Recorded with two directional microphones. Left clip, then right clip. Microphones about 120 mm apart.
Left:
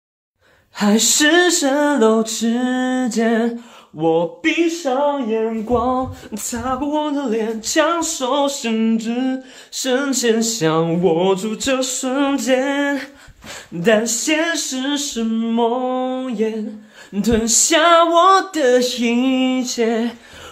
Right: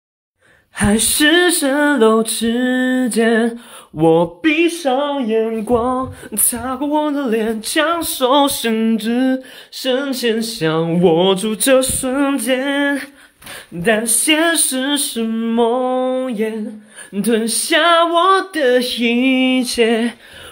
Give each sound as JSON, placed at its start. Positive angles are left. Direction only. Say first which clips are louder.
{"t": 0.7, "sound": "a sound", "louder": "even", "side_deg": 0}
{"t": 1.3, "sound": "female singing", "louder": "right 1 dB", "side_deg": -15}
{"t": 3.9, "sound": "music", "louder": "right 4 dB", "side_deg": -40}
{"t": 4.8, "sound": "a sound", "louder": "right 1 dB", "side_deg": -55}
{"t": 5.8, "sound": "female singing", "louder": "right 1 dB", "side_deg": -15}
{"t": 8.3, "sound": "music", "louder": "right 6 dB", "side_deg": -50}
{"t": 9.8, "sound": "a sound", "louder": "even", "side_deg": -5}
{"t": 11.0, "sound": "music", "louder": "right 3 dB", "side_deg": -30}
{"t": 12.0, "sound": "a sound", "louder": "right 1 dB", "side_deg": -5}
{"t": 14.2, "sound": "music", "louder": "right 4 dB", "side_deg": -30}
{"t": 15.3, "sound": "mantra", "louder": "right 3 dB", "side_deg": -20}
{"t": 17.2, "sound": "female singing", "louder": "left 1 dB", "side_deg": -10}